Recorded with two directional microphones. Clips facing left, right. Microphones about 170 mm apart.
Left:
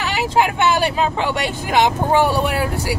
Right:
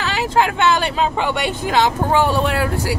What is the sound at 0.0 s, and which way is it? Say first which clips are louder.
Speech: even; 15° left (ahead or behind).